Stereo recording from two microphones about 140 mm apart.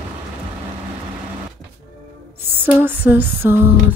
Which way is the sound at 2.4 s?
15° right (ahead or behind).